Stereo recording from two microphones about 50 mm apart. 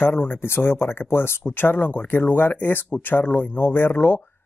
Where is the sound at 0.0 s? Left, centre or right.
Left.